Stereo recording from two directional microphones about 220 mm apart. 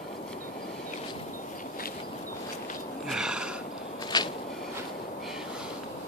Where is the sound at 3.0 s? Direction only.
5° right (ahead or behind).